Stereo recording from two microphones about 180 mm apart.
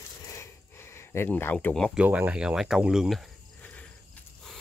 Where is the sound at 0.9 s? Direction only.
15° left (ahead or behind).